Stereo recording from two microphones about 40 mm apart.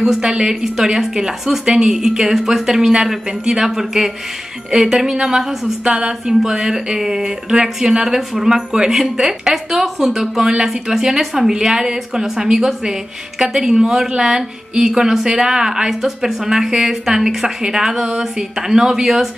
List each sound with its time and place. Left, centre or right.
0.2 s a woman's voice: centre
5.9 s a woman's voice: right